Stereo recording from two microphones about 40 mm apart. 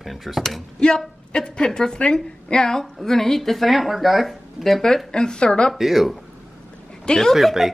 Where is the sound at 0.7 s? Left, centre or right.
Left; by 4.8 s centre.